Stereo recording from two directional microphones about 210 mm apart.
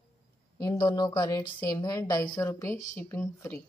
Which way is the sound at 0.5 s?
20° left (ahead or behind).